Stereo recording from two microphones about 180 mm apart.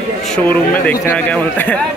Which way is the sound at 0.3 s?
10° left (ahead or behind).